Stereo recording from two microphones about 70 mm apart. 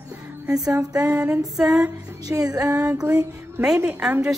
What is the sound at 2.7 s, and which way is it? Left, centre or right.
A woman's voice, centre.